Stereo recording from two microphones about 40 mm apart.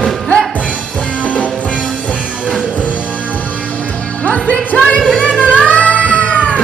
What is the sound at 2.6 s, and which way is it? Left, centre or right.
Music, left.